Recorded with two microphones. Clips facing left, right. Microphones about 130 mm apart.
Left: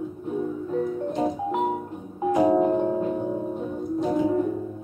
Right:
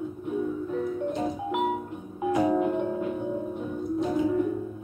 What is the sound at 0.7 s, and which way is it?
Music, 35° left (ahead or behind).